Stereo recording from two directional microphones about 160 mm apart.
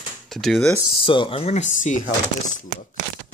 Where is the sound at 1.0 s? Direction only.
30° left (ahead or behind); by 2.1 s 50° left (ahead or behind).